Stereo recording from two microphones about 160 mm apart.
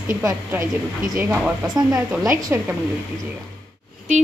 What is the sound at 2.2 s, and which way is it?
Speech, 20° right (ahead or behind).